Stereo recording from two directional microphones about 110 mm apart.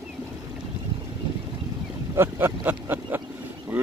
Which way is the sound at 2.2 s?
20° right (ahead or behind).